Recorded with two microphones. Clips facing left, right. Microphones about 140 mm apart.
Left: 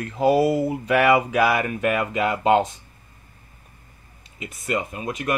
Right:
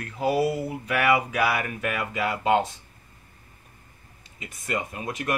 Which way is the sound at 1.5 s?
20° left (ahead or behind).